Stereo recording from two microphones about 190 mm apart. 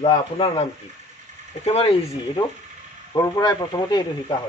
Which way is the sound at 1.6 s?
30° left (ahead or behind).